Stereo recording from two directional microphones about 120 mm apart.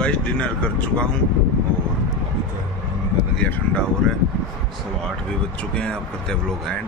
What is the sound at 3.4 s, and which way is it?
Speech, 10° left (ahead or behind).